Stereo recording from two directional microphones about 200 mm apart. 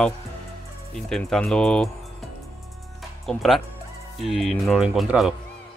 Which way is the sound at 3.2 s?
Centre (ahead or behind).